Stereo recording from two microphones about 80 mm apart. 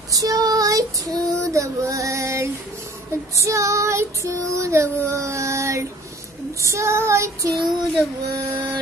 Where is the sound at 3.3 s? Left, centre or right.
Right.